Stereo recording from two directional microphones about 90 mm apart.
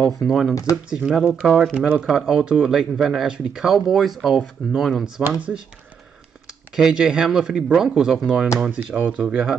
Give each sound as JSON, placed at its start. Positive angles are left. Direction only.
{"t": 0.3, "sound": "speech", "side_deg": 0}
{"t": 6.7, "sound": "speech", "side_deg": -5}